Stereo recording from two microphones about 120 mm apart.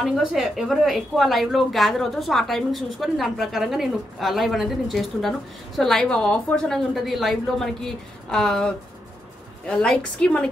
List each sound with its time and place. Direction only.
0.0 s a woman's voice: 5° right (ahead or behind)